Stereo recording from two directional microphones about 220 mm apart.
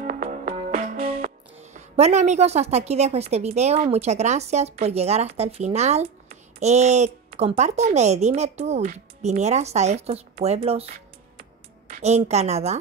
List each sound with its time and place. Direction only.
0.0 s music: 35° right (ahead or behind)
10.4 s speech: 30° right (ahead or behind)
11.9 s music: 30° right (ahead or behind)
12.3 s speech: 30° right (ahead or behind)